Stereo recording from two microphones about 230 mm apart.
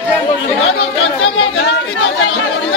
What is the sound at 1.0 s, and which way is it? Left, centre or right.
Speech, left.